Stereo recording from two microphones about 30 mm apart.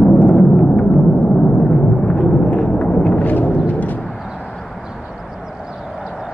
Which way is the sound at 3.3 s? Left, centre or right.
Left.